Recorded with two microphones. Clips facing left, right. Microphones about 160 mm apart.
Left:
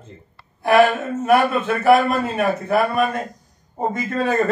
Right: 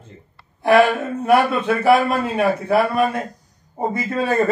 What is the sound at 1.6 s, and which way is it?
A man's voice, 5° right (ahead or behind).